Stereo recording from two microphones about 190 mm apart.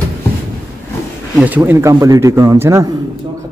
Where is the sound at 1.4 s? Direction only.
10° right (ahead or behind).